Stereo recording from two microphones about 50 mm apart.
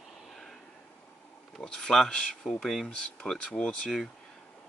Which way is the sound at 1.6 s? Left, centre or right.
Centre.